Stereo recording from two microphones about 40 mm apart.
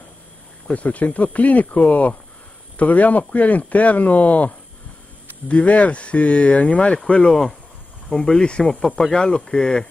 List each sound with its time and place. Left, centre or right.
0.7 s speech: left
8.8 s speech: centre